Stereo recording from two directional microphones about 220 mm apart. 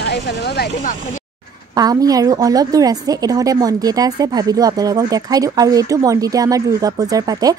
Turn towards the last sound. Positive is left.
turn(degrees=-15)  # may be behind; listen again after turning